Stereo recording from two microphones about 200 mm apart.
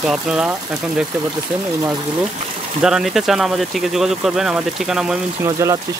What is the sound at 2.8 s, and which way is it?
Speech, 5° right (ahead or behind).